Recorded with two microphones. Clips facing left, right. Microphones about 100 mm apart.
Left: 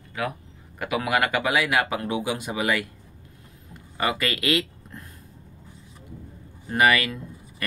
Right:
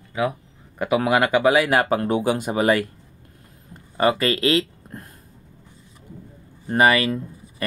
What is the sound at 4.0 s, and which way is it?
Speech, 30° right (ahead or behind).